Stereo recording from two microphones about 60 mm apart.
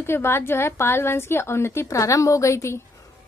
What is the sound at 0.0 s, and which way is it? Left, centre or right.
A woman's voice, left.